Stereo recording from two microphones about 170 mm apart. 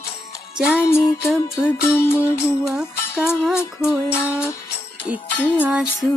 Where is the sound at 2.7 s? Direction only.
5° right (ahead or behind).